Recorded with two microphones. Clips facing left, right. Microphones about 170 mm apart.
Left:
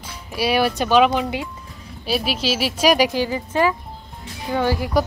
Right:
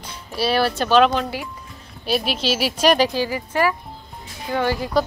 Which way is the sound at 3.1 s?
20° left (ahead or behind).